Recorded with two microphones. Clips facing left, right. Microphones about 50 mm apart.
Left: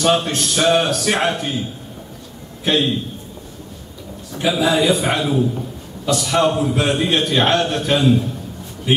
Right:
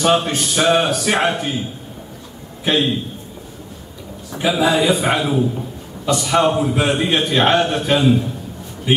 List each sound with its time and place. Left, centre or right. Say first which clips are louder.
0.0 s a man's voice: right 1 dB; centre
4.3 s a man's voice: right 1 dB; centre